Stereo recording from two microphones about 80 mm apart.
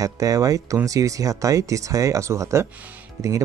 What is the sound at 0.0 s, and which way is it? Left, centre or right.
Speech, right.